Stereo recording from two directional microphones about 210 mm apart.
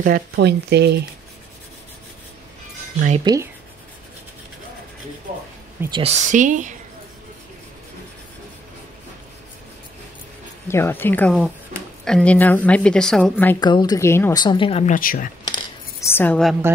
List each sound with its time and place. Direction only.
0.0 s speech: 45° right (ahead or behind)
3.3 s speech: 20° right (ahead or behind)
5.9 s speech: 25° right (ahead or behind)
10.7 s a woman's voice: 10° left (ahead or behind)
13.6 s a woman's voice: 20° left (ahead or behind); by 15.3 s 40° left (ahead or behind)
15.4 s cutlery: 15° left (ahead or behind)